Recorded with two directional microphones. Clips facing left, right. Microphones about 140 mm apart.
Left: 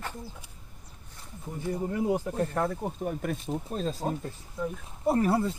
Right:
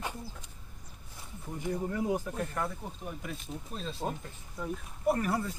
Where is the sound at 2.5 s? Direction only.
50° left (ahead or behind).